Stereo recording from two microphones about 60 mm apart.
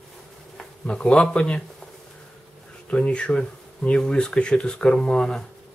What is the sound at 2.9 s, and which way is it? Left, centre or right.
Speech, centre.